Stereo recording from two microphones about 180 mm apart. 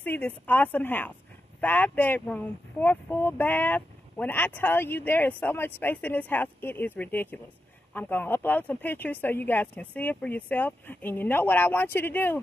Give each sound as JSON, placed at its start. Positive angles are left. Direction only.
{"t": 0.0, "sound": "speech", "side_deg": 10}